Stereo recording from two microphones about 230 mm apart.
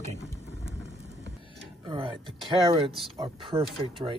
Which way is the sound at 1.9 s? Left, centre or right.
Right.